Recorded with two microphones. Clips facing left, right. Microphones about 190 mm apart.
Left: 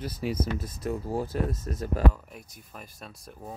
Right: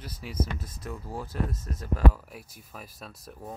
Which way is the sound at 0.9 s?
35° left (ahead or behind).